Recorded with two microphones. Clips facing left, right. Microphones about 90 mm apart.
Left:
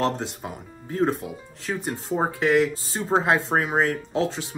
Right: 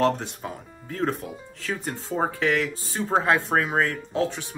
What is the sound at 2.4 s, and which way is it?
Speech, 25° left (ahead or behind).